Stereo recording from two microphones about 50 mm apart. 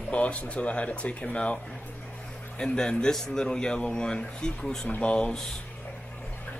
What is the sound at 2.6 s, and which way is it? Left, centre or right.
Speech, centre.